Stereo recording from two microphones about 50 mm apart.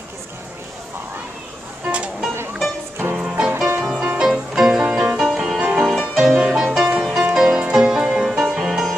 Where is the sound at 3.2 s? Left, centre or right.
Centre.